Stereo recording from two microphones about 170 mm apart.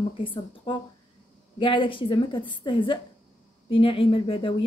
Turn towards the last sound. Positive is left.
turn(degrees=30)  # may be behind; listen again after turning